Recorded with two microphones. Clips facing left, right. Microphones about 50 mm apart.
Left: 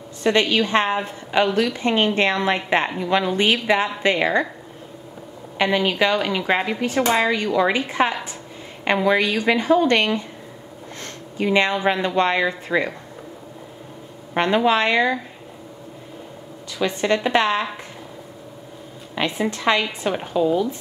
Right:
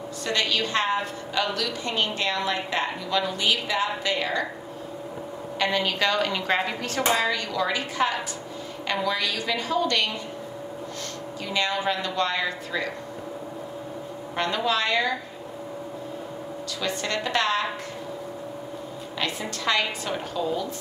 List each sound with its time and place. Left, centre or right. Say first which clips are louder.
0.2 s a woman's voice: left 8 dB; left
5.6 s a woman's voice: left 5 dB; centre
7.2 s a woman's voice: left 6 dB; left
11.3 s a woman's voice: left 8 dB; left
14.3 s a woman's voice: left 7 dB; left
16.7 s a woman's voice: left 8 dB; left
19.1 s a woman's voice: left 7 dB; left